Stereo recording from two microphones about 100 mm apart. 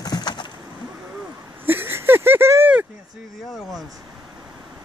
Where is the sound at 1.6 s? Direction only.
20° right (ahead or behind).